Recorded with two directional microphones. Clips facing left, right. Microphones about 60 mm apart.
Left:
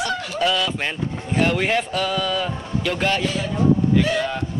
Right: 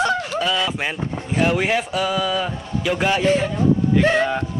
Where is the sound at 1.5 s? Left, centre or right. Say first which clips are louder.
Right 1 dB; centre.